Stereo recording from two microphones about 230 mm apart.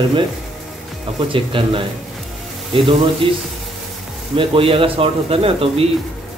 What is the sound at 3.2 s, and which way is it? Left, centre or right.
Speech, right.